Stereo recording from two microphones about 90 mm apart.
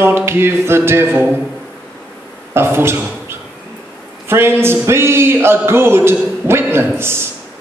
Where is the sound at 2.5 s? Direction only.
25° right (ahead or behind).